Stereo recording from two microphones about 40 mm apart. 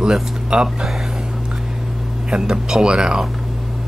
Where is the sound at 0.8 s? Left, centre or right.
Centre.